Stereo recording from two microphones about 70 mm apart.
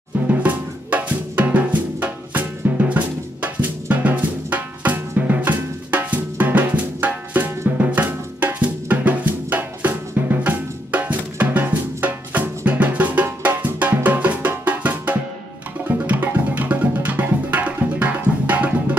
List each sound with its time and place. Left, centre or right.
0.4 s music: right